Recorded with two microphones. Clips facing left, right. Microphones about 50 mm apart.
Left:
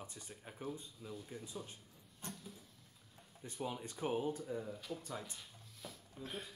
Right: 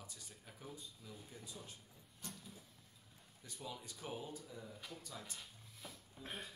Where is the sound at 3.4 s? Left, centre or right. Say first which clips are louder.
Left 7 dB; left.